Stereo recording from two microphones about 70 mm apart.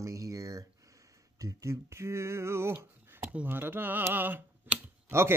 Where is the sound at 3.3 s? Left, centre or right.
Right.